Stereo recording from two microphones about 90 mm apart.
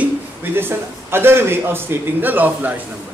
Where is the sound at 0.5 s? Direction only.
25° right (ahead or behind).